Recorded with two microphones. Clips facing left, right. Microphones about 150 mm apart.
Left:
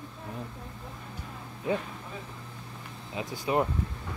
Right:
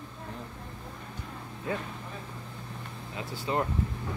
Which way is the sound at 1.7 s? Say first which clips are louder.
Left 4 dB; 20° left (ahead or behind).